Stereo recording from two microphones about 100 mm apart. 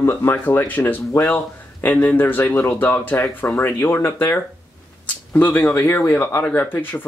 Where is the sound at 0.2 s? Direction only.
20° left (ahead or behind).